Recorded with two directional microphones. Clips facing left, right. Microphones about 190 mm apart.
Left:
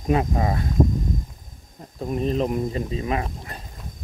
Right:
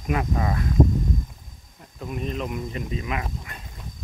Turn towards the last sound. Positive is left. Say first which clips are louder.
# left 4 dB
turn(degrees=35)  # may be behind; listen again after turning